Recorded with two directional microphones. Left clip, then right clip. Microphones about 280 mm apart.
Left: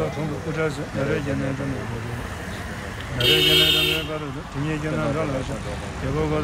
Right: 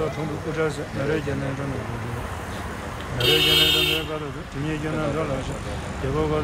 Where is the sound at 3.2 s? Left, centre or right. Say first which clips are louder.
Left 1 dB; right.